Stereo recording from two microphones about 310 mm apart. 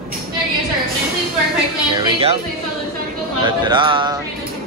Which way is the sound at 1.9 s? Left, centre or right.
Centre.